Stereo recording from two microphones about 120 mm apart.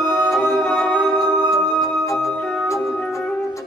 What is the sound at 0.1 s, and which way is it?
Music, 5° right (ahead or behind).